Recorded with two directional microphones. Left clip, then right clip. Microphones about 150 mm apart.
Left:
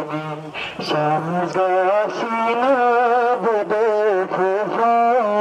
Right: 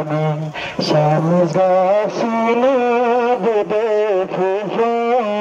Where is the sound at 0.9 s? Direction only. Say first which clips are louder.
Right 4 dB; 30° right (ahead or behind).